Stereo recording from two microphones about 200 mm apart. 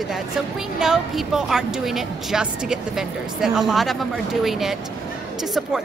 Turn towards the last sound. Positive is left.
turn(degrees=0)  # may be behind; listen again after turning